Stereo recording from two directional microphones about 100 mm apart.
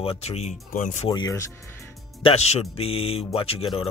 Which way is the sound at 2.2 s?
80° left.